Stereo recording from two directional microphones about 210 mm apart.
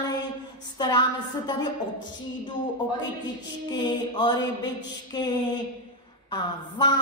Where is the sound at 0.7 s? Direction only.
20° left (ahead or behind).